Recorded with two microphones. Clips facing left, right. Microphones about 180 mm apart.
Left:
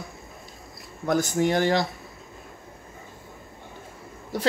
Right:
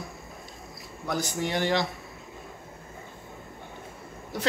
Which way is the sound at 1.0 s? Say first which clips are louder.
Left 6 dB; 50° left (ahead or behind).